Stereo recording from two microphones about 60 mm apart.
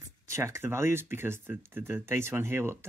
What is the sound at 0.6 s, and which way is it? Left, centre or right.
Speech, right.